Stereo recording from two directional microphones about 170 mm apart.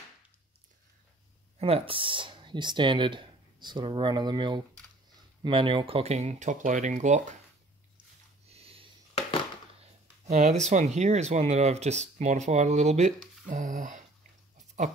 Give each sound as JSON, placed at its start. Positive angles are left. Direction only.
{"t": 1.6, "sound": "speech", "side_deg": -35}
{"t": 8.5, "sound": "a sound", "side_deg": -35}
{"t": 10.3, "sound": "speech", "side_deg": -40}